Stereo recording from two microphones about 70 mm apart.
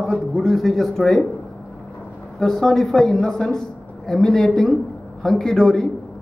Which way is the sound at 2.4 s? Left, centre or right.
Centre.